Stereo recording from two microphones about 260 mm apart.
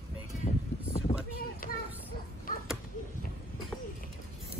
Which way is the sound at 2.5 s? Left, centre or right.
Left.